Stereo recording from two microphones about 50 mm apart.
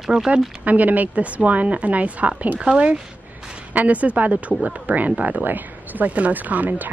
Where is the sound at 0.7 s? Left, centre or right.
Right.